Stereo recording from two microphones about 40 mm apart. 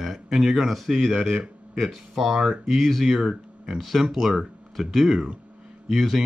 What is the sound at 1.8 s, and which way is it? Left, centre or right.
Speech, centre.